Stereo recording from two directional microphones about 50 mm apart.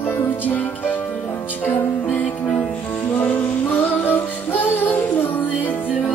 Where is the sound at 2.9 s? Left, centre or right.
Left.